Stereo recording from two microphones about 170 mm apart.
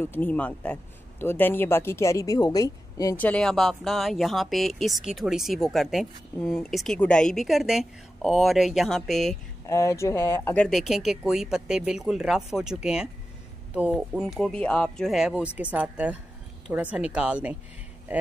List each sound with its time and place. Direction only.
0.0 s speech: 10° left (ahead or behind)
3.2 s speech: 5° left (ahead or behind)
9.7 s speech: 15° left (ahead or behind)
10.7 s a woman's voice: centre (ahead or behind)